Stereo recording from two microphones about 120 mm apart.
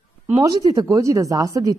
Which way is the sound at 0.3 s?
30° right (ahead or behind).